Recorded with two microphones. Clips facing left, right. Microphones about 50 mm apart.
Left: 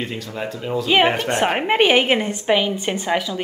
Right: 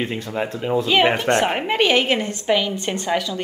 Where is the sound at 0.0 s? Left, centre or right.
Right.